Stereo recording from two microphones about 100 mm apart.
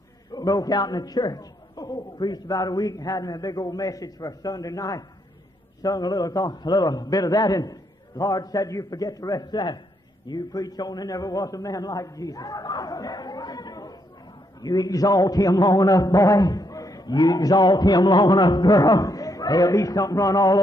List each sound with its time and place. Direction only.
0.3 s a man's voice: 40° left (ahead or behind)